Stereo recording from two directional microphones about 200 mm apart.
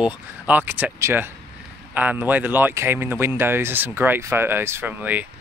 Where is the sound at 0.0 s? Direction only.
10° right (ahead or behind).